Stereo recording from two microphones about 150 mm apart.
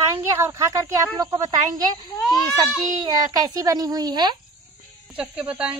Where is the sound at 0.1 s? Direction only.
20° right (ahead or behind).